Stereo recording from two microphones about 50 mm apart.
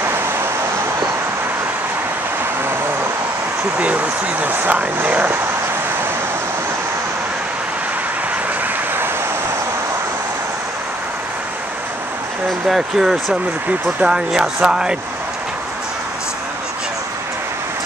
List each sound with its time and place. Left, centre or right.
0.1 s vehicle: right
3.7 s speech: right
12.6 s speech: centre